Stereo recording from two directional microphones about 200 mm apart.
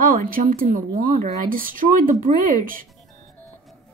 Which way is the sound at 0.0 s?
45° right (ahead or behind).